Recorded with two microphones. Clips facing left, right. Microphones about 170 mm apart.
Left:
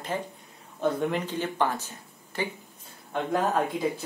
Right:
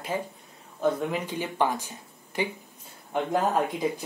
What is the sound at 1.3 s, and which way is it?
Speech, 10° right (ahead or behind).